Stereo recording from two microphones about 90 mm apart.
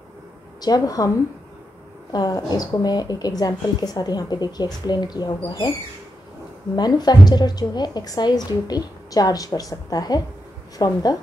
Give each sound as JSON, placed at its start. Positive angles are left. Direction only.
{"t": 0.6, "sound": "speech", "side_deg": 45}
{"t": 2.1, "sound": "speech", "side_deg": 50}
{"t": 6.7, "sound": "speech", "side_deg": 50}